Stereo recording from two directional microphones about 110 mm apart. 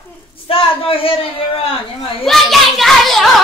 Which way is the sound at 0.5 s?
55° left (ahead or behind).